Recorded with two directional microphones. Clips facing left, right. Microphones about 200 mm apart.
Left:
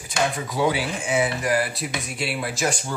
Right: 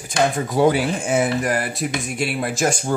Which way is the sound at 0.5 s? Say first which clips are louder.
Right 6 dB; 45° right (ahead or behind).